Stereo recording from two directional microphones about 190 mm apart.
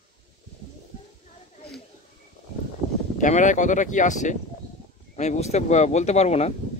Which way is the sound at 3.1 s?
40° left (ahead or behind).